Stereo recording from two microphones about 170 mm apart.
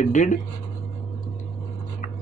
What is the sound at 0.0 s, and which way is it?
Speech, 45° left (ahead or behind).